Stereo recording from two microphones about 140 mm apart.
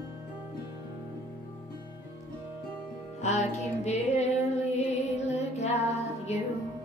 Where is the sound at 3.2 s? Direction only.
55° left (ahead or behind).